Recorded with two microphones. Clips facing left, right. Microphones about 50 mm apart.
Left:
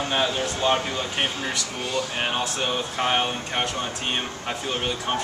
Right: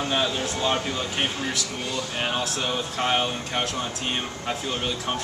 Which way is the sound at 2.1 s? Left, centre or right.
Centre.